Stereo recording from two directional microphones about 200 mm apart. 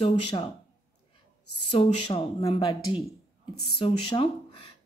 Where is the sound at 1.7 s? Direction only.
25° left (ahead or behind).